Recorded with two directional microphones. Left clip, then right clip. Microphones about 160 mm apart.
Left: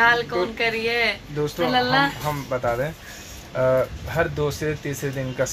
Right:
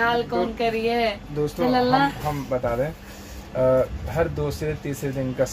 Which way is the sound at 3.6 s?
5° left (ahead or behind).